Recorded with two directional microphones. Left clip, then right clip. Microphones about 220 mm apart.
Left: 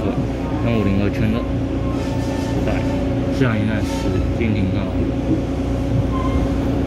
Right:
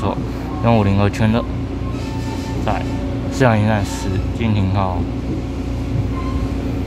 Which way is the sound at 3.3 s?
25° right (ahead or behind).